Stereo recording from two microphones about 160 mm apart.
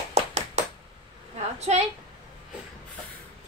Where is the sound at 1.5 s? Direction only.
45° right (ahead or behind).